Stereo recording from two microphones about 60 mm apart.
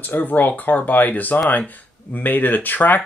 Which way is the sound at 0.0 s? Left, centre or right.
Left.